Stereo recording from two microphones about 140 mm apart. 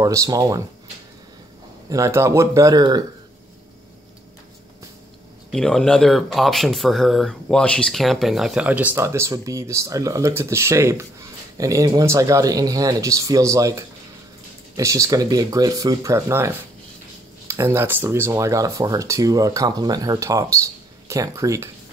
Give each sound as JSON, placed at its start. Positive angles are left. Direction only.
{"t": 0.0, "sound": "speech", "side_deg": -25}
{"t": 1.9, "sound": "speech", "side_deg": -20}
{"t": 5.5, "sound": "speech", "side_deg": 5}